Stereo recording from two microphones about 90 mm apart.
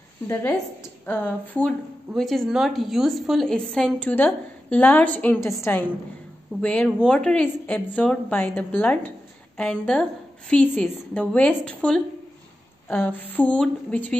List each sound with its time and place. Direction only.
0.3 s speech: 25° left (ahead or behind)
2.1 s a woman's voice: 5° left (ahead or behind)
4.1 s a woman's voice: 20° left (ahead or behind)